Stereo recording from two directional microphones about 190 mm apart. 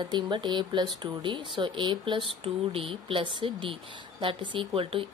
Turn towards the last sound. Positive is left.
turn(degrees=-30)  # may be behind; listen again after turning